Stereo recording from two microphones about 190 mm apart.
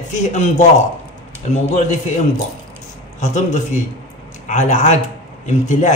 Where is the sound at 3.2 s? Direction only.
40° left (ahead or behind).